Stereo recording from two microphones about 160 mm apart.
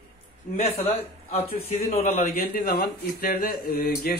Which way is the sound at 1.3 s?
40° left (ahead or behind).